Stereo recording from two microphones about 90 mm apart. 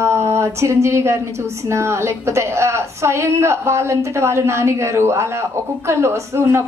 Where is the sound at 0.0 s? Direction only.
30° right (ahead or behind).